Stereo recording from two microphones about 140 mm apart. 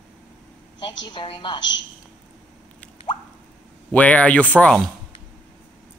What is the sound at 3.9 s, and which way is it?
Speech, 10° left (ahead or behind).